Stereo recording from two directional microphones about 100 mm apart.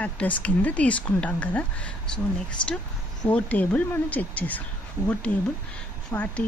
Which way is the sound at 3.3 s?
15° left (ahead or behind).